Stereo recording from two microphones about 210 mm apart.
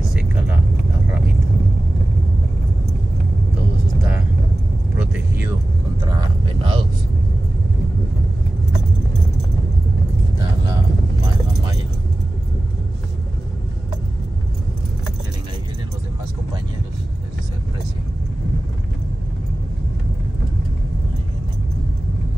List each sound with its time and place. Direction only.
0.0 s vehicle: 5° right (ahead or behind)
4.9 s vehicle: 5° right (ahead or behind)
5.9 s a sound: 20° right (ahead or behind)